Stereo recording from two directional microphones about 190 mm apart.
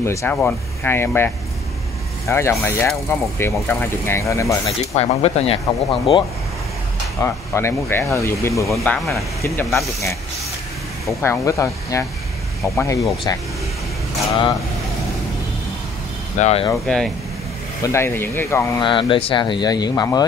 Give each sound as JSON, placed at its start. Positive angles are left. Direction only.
{"t": 0.0, "sound": "speech", "side_deg": 15}
{"t": 4.6, "sound": "speech", "side_deg": 35}
{"t": 7.2, "sound": "speech", "side_deg": 15}
{"t": 8.6, "sound": "speech", "side_deg": 0}
{"t": 11.2, "sound": "speech", "side_deg": 15}
{"t": 16.3, "sound": "speech", "side_deg": 35}
{"t": 16.8, "sound": "speech", "side_deg": 0}
{"t": 17.8, "sound": "speech", "side_deg": 15}
{"t": 18.8, "sound": "speech", "side_deg": 25}